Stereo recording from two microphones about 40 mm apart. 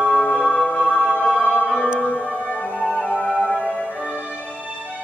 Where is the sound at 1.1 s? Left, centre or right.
Left.